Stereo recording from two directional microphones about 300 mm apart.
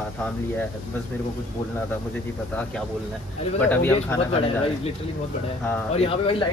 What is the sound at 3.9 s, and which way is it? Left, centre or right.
Speech, centre.